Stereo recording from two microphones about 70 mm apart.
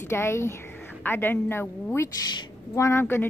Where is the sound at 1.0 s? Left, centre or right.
Left.